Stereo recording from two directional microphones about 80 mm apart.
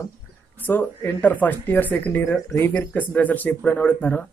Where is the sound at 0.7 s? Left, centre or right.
Left.